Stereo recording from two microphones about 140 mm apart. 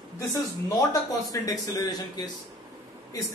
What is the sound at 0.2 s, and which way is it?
A man's voice, 20° left (ahead or behind).